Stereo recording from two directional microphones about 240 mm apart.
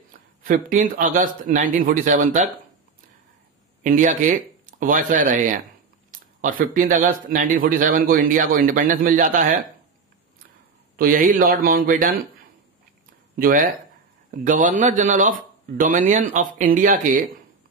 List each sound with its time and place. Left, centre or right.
0.4 s speech: right
3.8 s speech: right
11.0 s speech: right
13.4 s speech: right